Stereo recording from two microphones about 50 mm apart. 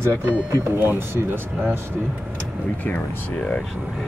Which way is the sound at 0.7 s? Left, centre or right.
Right.